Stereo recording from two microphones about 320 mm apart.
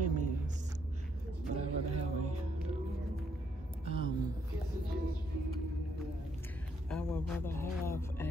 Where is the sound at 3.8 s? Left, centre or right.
Centre.